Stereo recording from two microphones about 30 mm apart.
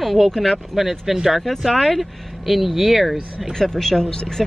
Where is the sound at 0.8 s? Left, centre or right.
Centre.